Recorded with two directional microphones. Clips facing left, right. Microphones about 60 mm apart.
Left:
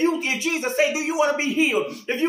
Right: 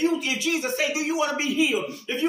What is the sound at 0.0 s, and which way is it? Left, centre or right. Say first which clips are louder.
Speech: left 2 dB; left.